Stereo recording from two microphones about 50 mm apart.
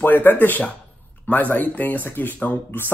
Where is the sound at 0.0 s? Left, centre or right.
Left.